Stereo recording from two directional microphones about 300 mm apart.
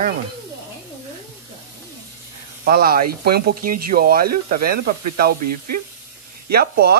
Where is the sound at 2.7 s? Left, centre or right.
Right.